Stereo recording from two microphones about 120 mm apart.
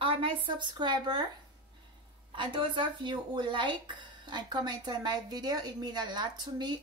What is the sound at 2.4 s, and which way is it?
Speech, 40° right (ahead or behind).